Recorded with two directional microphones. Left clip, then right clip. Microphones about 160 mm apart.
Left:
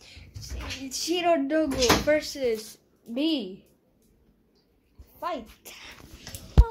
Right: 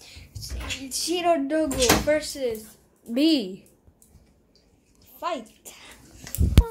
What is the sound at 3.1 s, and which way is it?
Speech, 20° right (ahead or behind).